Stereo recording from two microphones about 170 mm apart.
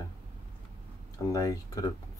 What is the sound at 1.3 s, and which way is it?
Speech, 20° left (ahead or behind).